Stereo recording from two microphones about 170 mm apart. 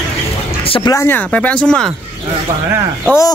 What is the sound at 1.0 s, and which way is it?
Speech, 10° left (ahead or behind).